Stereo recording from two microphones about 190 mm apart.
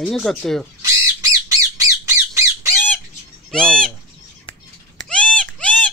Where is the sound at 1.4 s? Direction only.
15° right (ahead or behind).